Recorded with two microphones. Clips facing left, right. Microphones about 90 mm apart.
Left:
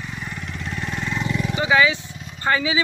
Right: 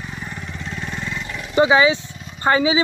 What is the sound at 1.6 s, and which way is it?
Speech, 25° right (ahead or behind).